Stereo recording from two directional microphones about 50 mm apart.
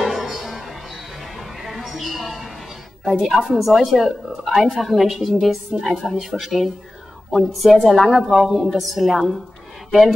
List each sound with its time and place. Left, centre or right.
0.0 s music: centre
1.6 s a sound: centre
3.1 s a woman's voice: centre